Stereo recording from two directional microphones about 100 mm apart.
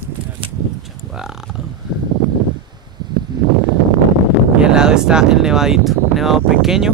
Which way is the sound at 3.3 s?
45° right (ahead or behind).